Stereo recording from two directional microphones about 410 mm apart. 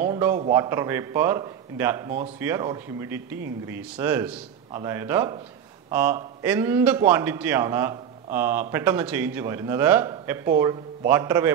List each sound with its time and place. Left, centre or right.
0.0 s a man's voice: centre